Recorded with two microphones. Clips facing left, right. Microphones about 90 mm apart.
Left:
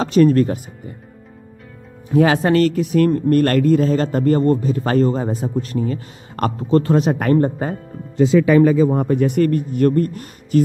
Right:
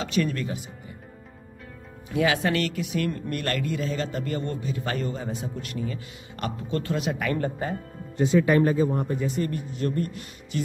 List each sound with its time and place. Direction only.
0.0 s speech: 40° left (ahead or behind)
2.0 s speech: 40° left (ahead or behind)
8.9 s speech: 80° left; by 10.6 s 45° left (ahead or behind)